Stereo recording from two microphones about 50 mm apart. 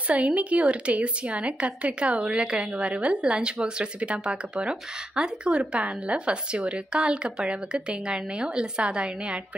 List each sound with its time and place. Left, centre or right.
0.1 s speech: right